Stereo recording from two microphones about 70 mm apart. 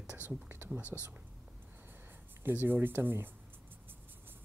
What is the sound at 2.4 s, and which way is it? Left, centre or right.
Speech, right.